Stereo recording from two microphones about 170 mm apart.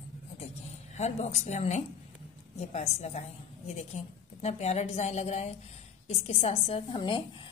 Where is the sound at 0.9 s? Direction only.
40° left (ahead or behind).